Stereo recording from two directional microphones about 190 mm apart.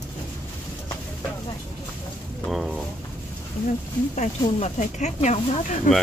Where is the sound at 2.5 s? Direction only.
Centre (ahead or behind).